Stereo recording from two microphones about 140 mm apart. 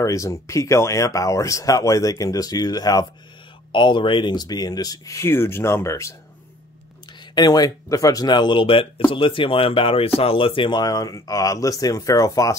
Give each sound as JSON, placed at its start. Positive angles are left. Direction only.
{"t": 0.0, "sound": "speech", "side_deg": 25}
{"t": 7.3, "sound": "speech", "side_deg": 30}